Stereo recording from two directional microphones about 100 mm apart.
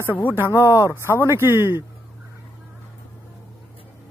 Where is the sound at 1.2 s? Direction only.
25° right (ahead or behind).